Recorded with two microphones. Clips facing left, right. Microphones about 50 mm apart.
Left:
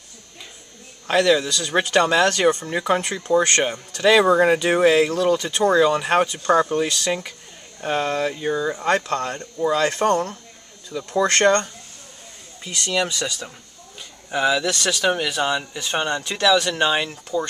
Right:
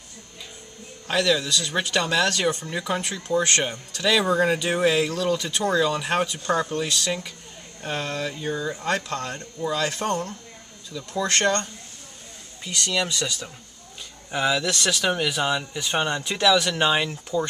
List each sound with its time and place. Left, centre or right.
1.1 s speech: left
12.6 s speech: centre